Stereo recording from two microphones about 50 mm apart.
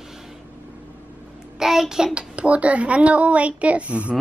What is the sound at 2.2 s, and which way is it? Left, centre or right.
A child's voice, right.